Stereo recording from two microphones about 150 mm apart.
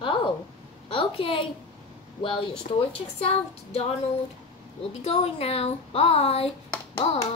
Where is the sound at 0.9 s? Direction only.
35° left (ahead or behind).